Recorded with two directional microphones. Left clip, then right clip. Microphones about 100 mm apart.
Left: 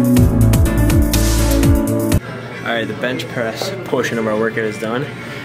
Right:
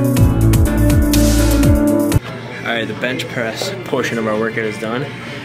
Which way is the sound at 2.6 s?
5° left (ahead or behind).